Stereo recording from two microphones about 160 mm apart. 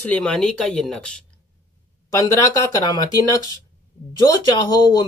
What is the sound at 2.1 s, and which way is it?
Speech, 20° left (ahead or behind).